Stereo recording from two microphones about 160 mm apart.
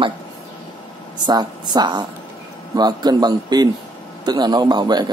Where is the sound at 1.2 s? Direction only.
25° right (ahead or behind).